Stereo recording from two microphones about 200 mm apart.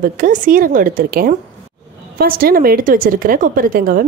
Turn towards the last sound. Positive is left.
turn(degrees=-45)  # may be behind; listen again after turning